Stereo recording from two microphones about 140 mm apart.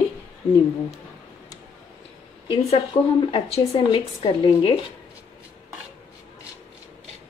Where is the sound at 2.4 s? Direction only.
40° left (ahead or behind).